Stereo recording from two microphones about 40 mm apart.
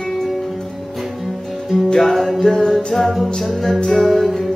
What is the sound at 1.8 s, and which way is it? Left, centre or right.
Music, centre.